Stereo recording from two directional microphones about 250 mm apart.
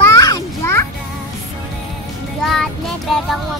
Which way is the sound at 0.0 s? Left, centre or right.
Centre.